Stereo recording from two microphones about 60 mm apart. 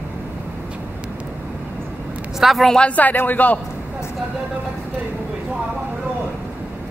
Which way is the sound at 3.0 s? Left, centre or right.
Left.